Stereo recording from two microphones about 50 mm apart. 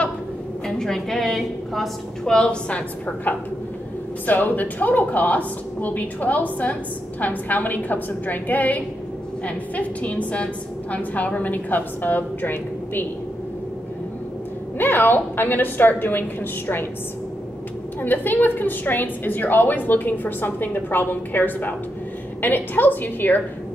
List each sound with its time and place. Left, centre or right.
0.7 s a woman's voice: centre
2.2 s a woman's voice: centre
4.3 s a woman's voice: left
14.8 s a woman's voice: left
18.0 s a woman's voice: left